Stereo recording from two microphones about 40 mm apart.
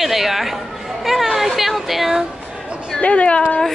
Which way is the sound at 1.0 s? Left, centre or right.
Centre.